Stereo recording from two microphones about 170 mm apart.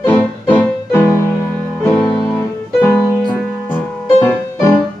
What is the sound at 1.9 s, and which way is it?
Music, 10° left (ahead or behind).